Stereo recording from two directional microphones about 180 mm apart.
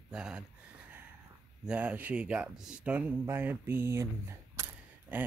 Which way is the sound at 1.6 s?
5° right (ahead or behind).